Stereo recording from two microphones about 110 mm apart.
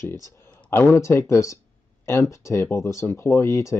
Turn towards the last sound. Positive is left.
turn(degrees=25)  # may be behind; listen again after turning